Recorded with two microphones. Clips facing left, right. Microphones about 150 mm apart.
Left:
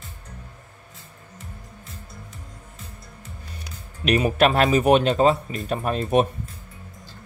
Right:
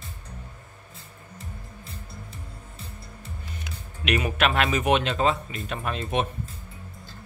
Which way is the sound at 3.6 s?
35° left (ahead or behind).